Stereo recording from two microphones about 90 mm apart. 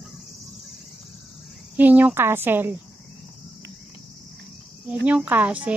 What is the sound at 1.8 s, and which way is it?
Speech, 20° right (ahead or behind).